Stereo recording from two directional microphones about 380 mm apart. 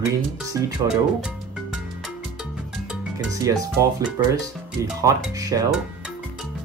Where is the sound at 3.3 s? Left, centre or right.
Centre.